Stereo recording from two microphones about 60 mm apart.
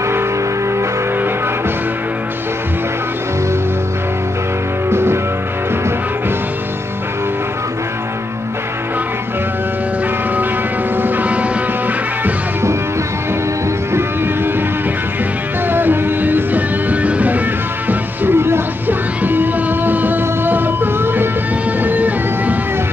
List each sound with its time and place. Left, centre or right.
4.8 s music: right
11.0 s vehicle: right
15.7 s music: right
17.8 s music: right